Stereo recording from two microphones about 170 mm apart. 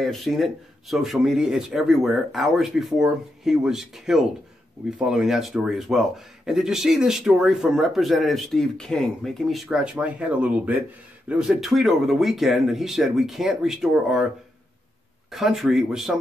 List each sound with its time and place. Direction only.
0.0 s speech: centre (ahead or behind)
15.3 s speech: centre (ahead or behind)